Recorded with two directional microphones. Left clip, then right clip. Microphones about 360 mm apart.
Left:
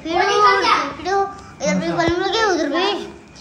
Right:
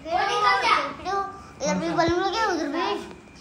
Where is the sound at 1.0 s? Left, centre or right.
Centre.